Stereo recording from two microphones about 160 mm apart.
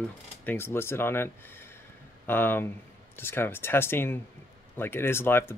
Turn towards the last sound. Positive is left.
turn(degrees=15)  # may be behind; listen again after turning